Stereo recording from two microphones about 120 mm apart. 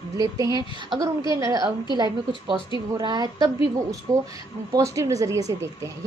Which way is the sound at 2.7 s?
40° right (ahead or behind).